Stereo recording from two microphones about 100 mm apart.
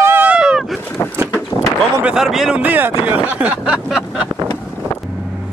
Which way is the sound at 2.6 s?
20° right (ahead or behind).